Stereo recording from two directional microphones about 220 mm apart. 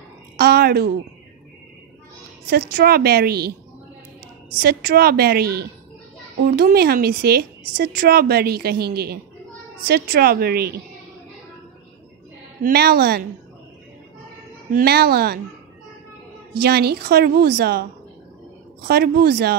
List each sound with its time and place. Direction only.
0.4 s a woman's voice: 45° right (ahead or behind)
2.5 s a woman's voice: 45° right (ahead or behind)
4.6 s a woman's voice: 45° right (ahead or behind)
12.6 s a woman's voice: 45° right (ahead or behind)
14.7 s a woman's voice: 45° right (ahead or behind)
16.5 s a woman's voice: 45° right (ahead or behind)
18.9 s a woman's voice: 45° right (ahead or behind)